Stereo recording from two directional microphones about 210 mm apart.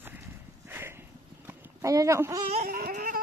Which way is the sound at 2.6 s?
45° right (ahead or behind).